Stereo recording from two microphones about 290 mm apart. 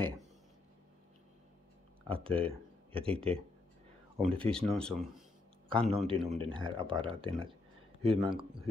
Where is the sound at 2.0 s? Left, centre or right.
Centre.